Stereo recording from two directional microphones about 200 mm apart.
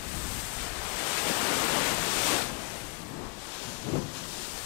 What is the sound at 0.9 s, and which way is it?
Pink noise, 10° left (ahead or behind).